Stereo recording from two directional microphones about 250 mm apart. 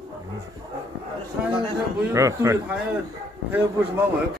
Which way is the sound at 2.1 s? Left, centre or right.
Centre.